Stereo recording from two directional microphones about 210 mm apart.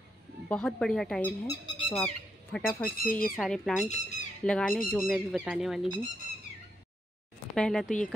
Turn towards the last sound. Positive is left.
turn(degrees=5)  # may be behind; listen again after turning